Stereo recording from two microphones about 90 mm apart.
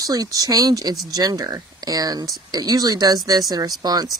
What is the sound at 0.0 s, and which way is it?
Speech, 40° right (ahead or behind).